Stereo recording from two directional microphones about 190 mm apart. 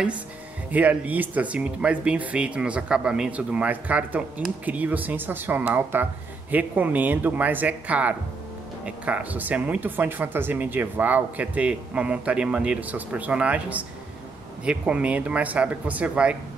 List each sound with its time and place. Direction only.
0.7 s speech: 10° right (ahead or behind)